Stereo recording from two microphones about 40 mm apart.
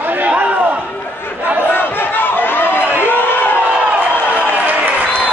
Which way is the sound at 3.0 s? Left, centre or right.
Left.